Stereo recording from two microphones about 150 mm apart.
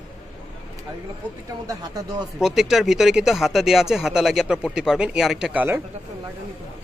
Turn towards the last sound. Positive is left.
turn(degrees=-5)  # may be behind; listen again after turning